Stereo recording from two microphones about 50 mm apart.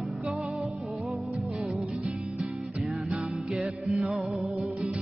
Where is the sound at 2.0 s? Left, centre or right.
Right.